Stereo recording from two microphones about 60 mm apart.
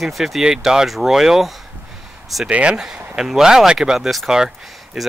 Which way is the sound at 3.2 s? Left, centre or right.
Centre.